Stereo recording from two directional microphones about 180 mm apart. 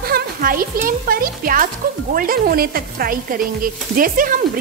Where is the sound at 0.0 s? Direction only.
55° right (ahead or behind).